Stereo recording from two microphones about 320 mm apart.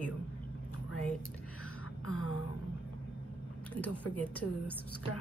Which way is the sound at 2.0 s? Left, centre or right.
Left.